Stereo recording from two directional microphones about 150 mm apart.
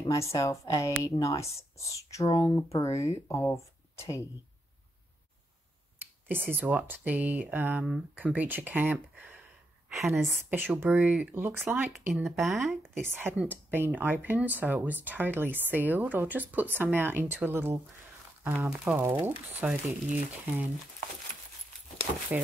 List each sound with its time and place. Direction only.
0.0 s speech: 20° left (ahead or behind)
6.5 s a woman's voice: 10° right (ahead or behind)
10.5 s speech: 10° right (ahead or behind)
11.9 s speech: centre (ahead or behind)
12.9 s speech: 15° right (ahead or behind)